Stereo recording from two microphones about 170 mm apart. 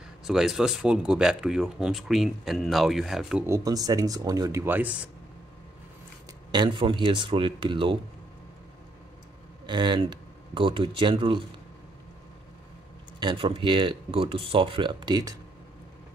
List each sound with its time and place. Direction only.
0.2 s speech: 5° right (ahead or behind)
3.4 s speech: 20° right (ahead or behind)
6.5 s speech: 25° right (ahead or behind)
9.7 s speech: 25° right (ahead or behind)
13.2 s speech: 30° right (ahead or behind)